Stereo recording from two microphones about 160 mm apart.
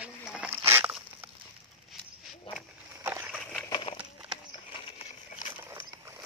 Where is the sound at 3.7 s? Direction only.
35° left (ahead or behind).